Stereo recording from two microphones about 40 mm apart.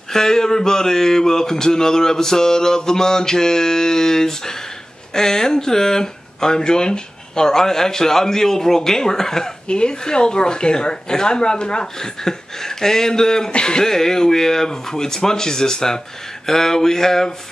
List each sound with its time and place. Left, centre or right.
0.1 s speech: centre
9.7 s speech: left